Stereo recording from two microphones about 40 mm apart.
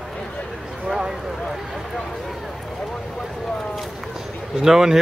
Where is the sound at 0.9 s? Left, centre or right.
Centre.